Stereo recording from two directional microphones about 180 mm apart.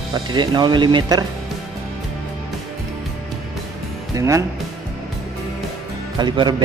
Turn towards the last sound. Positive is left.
turn(degrees=-25)  # may be behind; listen again after turning